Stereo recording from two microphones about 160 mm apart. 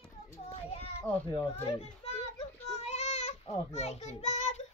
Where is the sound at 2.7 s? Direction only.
40° left (ahead or behind).